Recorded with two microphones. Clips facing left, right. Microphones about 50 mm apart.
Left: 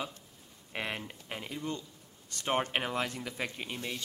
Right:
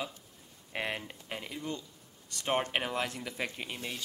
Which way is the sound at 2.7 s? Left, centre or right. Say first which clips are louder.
Even; centre.